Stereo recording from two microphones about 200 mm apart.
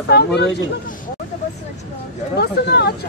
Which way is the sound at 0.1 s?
55° left (ahead or behind).